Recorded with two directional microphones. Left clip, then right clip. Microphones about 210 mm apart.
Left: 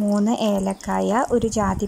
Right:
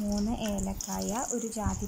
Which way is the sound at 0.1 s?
25° left (ahead or behind).